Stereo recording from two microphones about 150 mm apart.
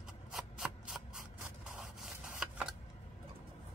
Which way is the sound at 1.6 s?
5° right (ahead or behind).